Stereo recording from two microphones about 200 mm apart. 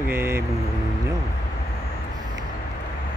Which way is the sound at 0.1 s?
10° right (ahead or behind).